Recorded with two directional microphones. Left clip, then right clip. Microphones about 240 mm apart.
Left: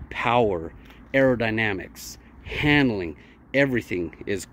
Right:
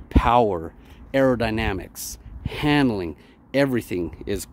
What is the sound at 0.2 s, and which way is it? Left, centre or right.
Speech, centre.